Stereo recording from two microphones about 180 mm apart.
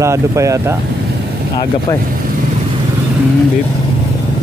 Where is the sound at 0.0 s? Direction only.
15° right (ahead or behind).